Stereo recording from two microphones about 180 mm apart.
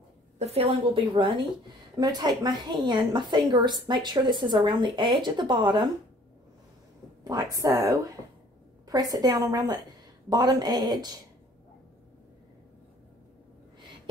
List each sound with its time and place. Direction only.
0.4 s speech: 35° right (ahead or behind)
7.2 s speech: 20° right (ahead or behind)